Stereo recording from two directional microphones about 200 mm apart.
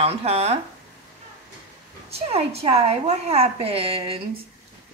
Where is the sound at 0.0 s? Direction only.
30° right (ahead or behind).